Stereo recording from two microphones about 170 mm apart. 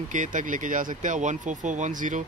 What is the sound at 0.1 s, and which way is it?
Speech, 50° right (ahead or behind).